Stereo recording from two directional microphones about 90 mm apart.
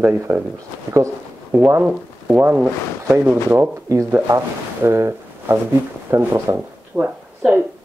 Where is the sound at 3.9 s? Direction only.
35° right (ahead or behind).